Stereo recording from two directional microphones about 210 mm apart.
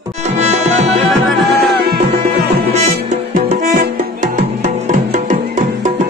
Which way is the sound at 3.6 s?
35° right (ahead or behind).